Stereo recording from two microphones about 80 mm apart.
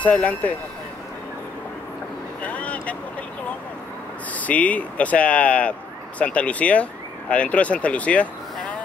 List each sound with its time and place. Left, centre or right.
0.0 s speech: centre
2.4 s vehicle: centre
4.3 s speech: centre